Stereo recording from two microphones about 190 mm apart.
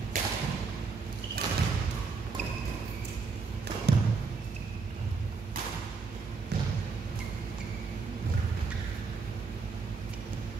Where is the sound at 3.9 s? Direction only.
60° right (ahead or behind).